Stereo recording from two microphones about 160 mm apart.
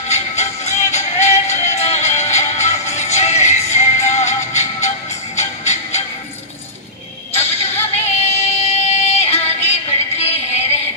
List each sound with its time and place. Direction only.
0.1 s music: 45° left (ahead or behind)
7.3 s music: 40° left (ahead or behind)